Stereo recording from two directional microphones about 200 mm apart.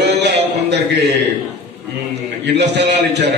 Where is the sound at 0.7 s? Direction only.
60° right (ahead or behind).